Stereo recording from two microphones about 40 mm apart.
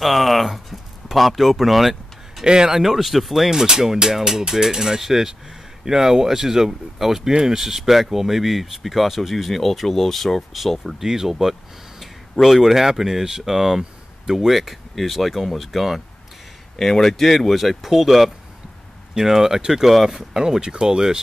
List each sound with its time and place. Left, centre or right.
0.0 s speech: centre
2.4 s speech: centre
2.8 s speech: centre
3.4 s speech: centre
16.7 s speech: centre